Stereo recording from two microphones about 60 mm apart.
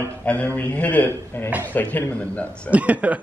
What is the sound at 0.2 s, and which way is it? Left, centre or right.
Speech, left.